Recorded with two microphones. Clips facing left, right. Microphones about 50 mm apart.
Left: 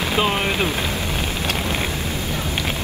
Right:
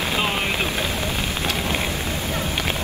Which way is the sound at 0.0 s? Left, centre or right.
Left.